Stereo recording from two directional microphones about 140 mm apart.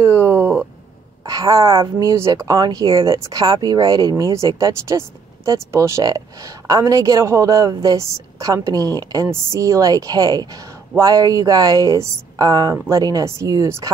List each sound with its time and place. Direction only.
0.0 s speech: 15° right (ahead or behind)
1.2 s speech: 25° right (ahead or behind)